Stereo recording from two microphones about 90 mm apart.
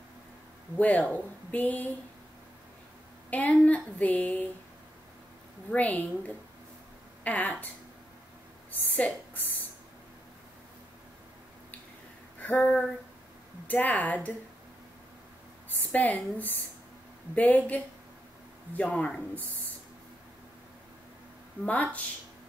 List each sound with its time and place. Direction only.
0.7 s a woman's voice: 15° left (ahead or behind)
3.3 s a woman's voice: 15° left (ahead or behind)
5.7 s a woman's voice: 15° left (ahead or behind)
8.9 s speech: 15° left (ahead or behind)
12.4 s a sound: 15° left (ahead or behind)
13.7 s a woman's voice: 20° left (ahead or behind)
15.9 s a woman's voice: 15° left (ahead or behind)
21.6 s a woman's voice: 20° left (ahead or behind)